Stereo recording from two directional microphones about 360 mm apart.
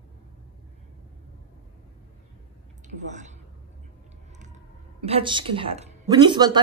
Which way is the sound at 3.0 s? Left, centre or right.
Centre.